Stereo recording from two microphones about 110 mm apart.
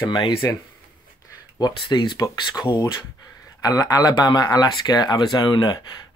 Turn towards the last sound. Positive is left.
turn(degrees=40)  # may be behind; listen again after turning